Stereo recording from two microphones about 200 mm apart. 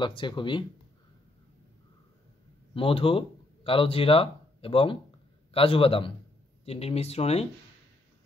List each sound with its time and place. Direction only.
0.0 s speech: 25° left (ahead or behind)
2.7 s a man's voice: 25° left (ahead or behind)